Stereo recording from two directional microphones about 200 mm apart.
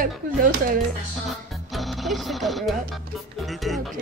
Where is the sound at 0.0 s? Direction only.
45° right (ahead or behind).